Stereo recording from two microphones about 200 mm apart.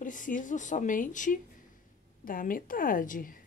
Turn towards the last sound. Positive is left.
turn(degrees=45)  # may be behind; listen again after turning